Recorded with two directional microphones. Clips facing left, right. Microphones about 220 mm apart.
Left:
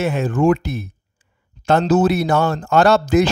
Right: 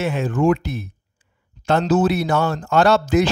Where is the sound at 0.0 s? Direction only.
45° left (ahead or behind).